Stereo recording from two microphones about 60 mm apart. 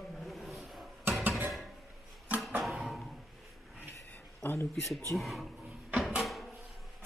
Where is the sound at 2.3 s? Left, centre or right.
Right.